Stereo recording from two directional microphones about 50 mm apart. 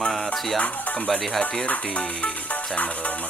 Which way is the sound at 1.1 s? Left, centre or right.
Centre.